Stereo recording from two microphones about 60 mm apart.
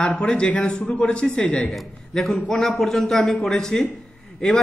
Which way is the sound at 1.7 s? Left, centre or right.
Centre.